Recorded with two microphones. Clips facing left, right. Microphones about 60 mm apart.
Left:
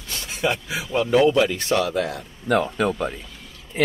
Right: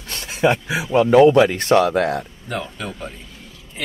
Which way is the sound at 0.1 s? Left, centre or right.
Right.